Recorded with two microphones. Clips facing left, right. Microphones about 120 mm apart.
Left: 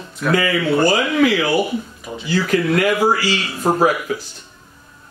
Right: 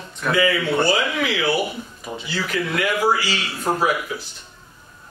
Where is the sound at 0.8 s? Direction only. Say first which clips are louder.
Left 6 dB; 45° left (ahead or behind).